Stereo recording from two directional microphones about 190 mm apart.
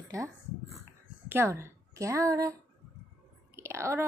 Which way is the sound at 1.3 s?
15° right (ahead or behind).